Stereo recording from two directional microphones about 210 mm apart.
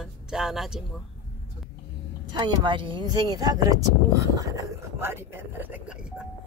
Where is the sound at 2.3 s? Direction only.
20° right (ahead or behind).